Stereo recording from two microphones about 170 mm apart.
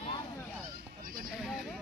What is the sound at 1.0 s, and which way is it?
Sheep, 55° right (ahead or behind).